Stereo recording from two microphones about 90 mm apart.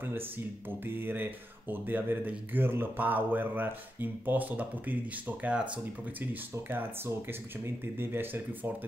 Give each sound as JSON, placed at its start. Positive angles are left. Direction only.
{"t": 0.0, "sound": "speech", "side_deg": -25}
{"t": 6.5, "sound": "speech", "side_deg": -25}